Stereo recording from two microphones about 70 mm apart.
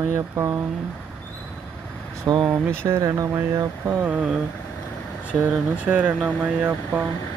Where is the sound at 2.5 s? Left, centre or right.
Right.